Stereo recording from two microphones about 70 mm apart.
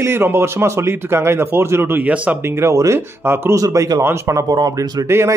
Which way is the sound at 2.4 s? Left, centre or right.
Right.